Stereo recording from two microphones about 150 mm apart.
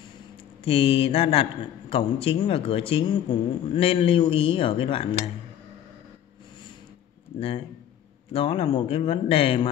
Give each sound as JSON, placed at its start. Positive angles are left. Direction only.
{"t": 0.7, "sound": "a man's voice", "side_deg": 40}
{"t": 7.3, "sound": "a man's voice", "side_deg": 40}